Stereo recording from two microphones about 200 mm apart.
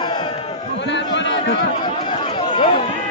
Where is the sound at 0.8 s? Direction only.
60° left (ahead or behind).